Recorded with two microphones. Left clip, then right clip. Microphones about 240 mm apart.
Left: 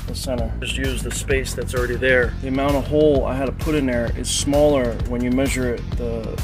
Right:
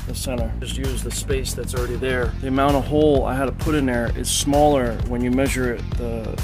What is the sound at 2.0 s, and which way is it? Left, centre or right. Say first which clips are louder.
Speech: left 8 dB; centre.